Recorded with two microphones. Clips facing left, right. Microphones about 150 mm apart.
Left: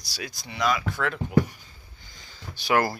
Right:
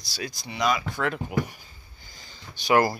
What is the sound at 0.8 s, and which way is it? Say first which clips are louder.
Speech: even; 5° right (ahead or behind).